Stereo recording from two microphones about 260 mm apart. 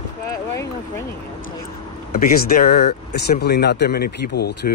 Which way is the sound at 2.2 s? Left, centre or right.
Left.